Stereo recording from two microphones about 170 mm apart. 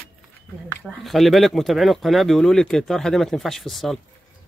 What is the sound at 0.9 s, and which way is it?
Speech, centre (ahead or behind).